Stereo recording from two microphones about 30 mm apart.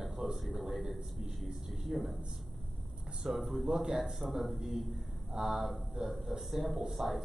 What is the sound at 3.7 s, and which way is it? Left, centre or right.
Speech, centre.